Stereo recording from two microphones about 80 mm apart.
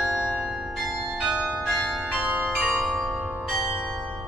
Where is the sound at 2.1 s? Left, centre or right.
Centre.